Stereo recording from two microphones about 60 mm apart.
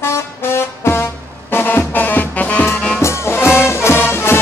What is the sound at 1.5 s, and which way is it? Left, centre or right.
Music, left.